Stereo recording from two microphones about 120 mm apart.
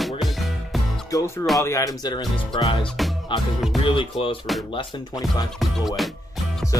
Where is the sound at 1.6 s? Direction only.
30° left (ahead or behind); by 2.7 s 45° left (ahead or behind).